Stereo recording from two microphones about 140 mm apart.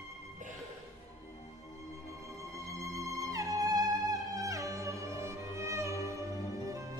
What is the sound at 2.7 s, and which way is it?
Music, 20° right (ahead or behind).